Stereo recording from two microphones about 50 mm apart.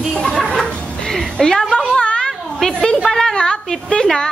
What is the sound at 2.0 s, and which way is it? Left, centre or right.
Children playing, centre.